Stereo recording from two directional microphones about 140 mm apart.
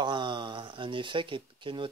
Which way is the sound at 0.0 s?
35° right (ahead or behind).